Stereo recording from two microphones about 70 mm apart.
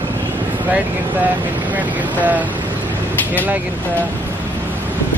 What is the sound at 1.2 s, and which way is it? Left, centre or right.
Speech, right.